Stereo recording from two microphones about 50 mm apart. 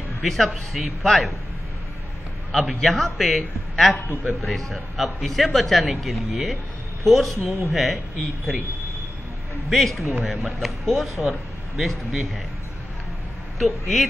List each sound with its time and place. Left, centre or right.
0.2 s a man's voice: centre
2.5 s a man's voice: centre
9.7 s a man's voice: centre
13.6 s a man's voice: centre